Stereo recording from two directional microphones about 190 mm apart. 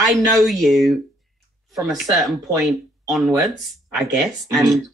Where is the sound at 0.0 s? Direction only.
Centre (ahead or behind).